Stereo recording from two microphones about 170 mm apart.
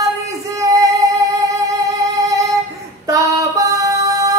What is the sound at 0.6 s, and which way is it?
Female singing, 20° right (ahead or behind).